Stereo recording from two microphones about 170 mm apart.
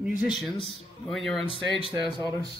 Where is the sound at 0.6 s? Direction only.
Centre (ahead or behind).